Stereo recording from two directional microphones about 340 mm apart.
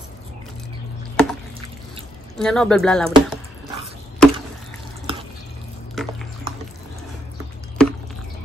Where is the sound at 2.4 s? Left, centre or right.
Centre.